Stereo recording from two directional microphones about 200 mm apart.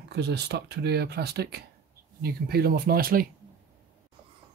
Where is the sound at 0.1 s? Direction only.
55° right (ahead or behind).